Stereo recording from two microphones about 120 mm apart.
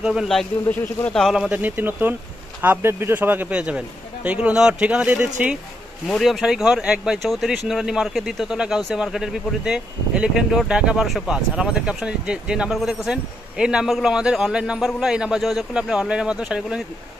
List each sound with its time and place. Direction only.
0.0 s speech: 5° right (ahead or behind)
0.7 s speech: 15° left (ahead or behind)
1.2 s speech: centre (ahead or behind)
1.5 s a man's voice: 15° right (ahead or behind)
6.0 s speech: centre (ahead or behind)